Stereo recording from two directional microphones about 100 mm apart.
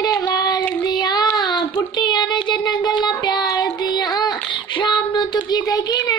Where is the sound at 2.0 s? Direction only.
50° left (ahead or behind).